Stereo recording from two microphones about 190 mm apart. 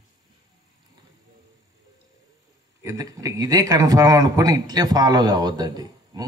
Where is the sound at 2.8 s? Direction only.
20° right (ahead or behind).